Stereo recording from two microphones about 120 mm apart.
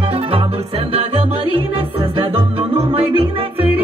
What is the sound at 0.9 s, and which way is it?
Music, 55° right (ahead or behind).